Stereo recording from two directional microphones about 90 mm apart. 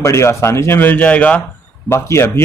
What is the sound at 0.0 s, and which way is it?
Speech, 30° left (ahead or behind).